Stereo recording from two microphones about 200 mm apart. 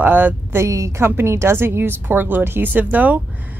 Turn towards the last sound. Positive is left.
turn(degrees=-10)  # may be behind; listen again after turning